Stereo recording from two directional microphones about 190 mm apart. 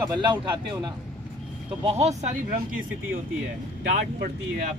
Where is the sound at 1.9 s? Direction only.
35° right (ahead or behind).